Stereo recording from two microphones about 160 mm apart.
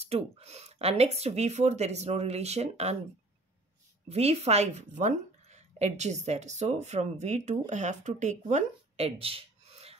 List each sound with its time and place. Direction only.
0.0 s speech: 40° right (ahead or behind)
4.1 s a woman's voice: 40° right (ahead or behind)